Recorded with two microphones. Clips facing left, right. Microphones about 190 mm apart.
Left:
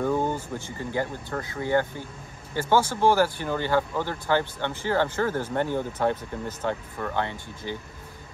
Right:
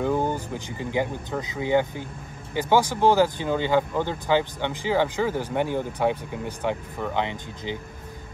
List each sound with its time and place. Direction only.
0.0 s speech: 10° right (ahead or behind)